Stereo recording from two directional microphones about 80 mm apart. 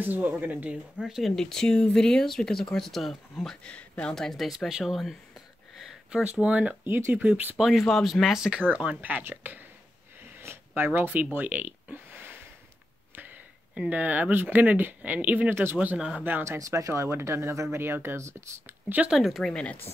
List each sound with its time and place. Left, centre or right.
0.0 s speech: right
1.0 s speech: centre
1.3 s speech: centre
3.6 s speech: centre
4.1 s speech: centre
5.8 s a sound: centre
6.3 s speech: centre
7.5 s speech: centre
8.5 s speech: right
10.4 s a sound: right
13.1 s speech: right
16.4 s speech: right
19.0 s speech: centre
19.5 s speech: centre